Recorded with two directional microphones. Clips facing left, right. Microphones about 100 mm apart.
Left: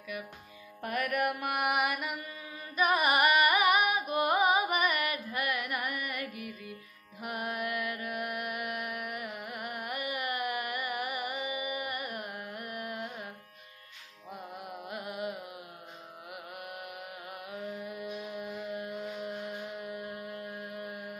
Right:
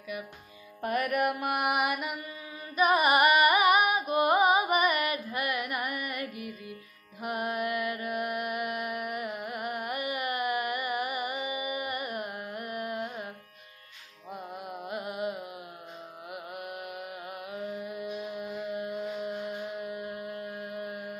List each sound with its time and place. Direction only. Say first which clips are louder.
0.8 s music: right 3 dB; 25° right (ahead or behind)
2.7 s carnatic music: right 3 dB; 20° right (ahead or behind)
7.2 s music: right 4 dB; 25° right (ahead or behind)
14.9 s carnatic music: right 4 dB; 20° right (ahead or behind)
16.5 s mantra: right 4 dB; 20° right (ahead or behind)
19.8 s music: right 3 dB; 15° right (ahead or behind)